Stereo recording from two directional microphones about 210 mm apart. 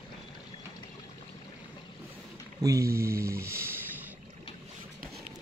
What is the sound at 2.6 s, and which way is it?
Speech, 15° right (ahead or behind).